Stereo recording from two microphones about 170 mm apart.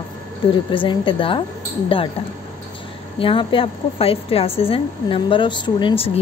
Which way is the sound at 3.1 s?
30° left (ahead or behind).